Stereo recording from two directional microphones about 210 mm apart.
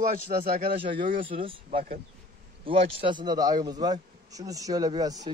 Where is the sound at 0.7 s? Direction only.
25° right (ahead or behind).